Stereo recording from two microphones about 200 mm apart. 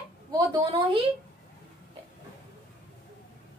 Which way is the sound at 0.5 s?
25° right (ahead or behind).